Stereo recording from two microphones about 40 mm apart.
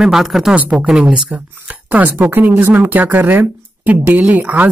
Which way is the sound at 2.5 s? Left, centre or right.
Right.